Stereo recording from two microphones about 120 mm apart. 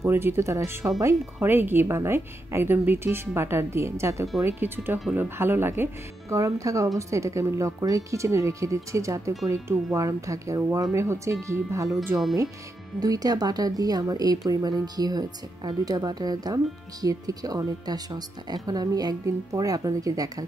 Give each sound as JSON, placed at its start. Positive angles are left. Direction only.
{"t": 0.0, "sound": "a woman's voice", "side_deg": -20}
{"t": 13.0, "sound": "speech", "side_deg": -30}